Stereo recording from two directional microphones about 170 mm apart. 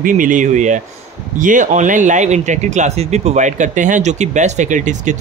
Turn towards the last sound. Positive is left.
turn(degrees=-45)  # may be behind; listen again after turning